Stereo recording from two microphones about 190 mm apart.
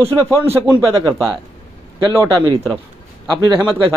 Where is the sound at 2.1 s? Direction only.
15° right (ahead or behind).